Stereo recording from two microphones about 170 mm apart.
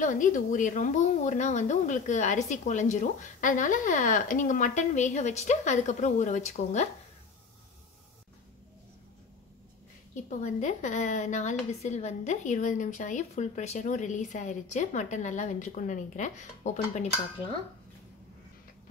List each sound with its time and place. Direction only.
0.0 s speech: 50° left (ahead or behind)
10.1 s speech: 45° left (ahead or behind)